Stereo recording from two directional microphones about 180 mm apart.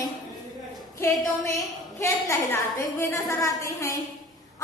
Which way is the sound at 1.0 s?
15° left (ahead or behind).